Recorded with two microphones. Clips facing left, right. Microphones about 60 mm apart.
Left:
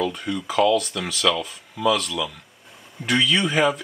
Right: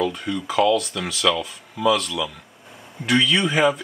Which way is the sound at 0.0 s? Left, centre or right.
Centre.